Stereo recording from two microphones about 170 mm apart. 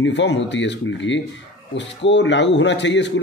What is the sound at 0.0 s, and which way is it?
Speech, 90° left.